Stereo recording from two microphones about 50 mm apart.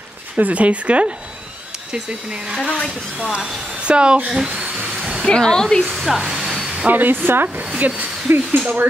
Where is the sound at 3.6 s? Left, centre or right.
Right.